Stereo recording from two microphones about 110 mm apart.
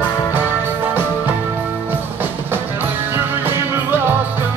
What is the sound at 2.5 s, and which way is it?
Music, 20° right (ahead or behind).